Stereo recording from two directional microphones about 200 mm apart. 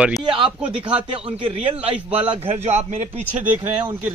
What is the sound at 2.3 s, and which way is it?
Speech, 30° right (ahead or behind).